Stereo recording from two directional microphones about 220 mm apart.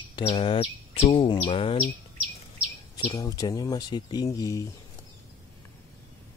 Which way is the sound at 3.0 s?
20° left (ahead or behind).